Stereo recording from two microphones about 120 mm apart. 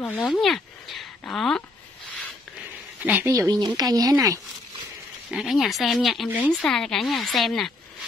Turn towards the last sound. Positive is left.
turn(degrees=5)  # may be behind; listen again after turning